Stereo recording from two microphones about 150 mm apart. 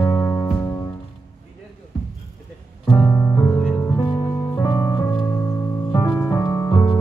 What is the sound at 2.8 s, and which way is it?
Music, 10° left (ahead or behind).